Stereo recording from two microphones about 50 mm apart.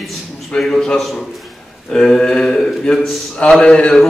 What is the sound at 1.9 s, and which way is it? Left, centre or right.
Speech, centre.